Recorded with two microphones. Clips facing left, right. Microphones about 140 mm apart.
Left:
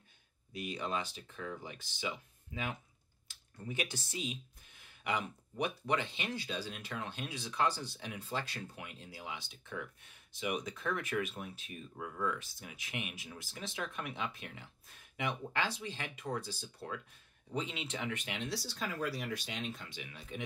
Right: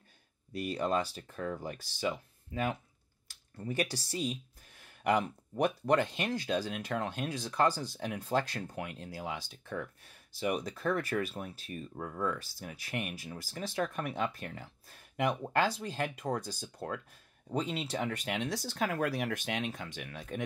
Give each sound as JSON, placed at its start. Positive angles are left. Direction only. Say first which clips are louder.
{"t": 0.6, "sound": "speech", "louder": "right 6 dB", "side_deg": -40}
{"t": 17.5, "sound": "speech", "louder": "right 5 dB", "side_deg": -40}